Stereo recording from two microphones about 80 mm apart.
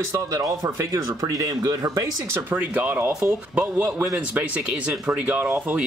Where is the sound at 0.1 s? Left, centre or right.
Right.